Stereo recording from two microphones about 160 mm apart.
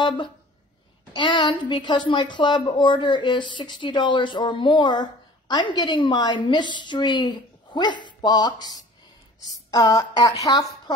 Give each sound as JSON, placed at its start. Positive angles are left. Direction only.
{"t": 1.1, "sound": "a woman's voice", "side_deg": 30}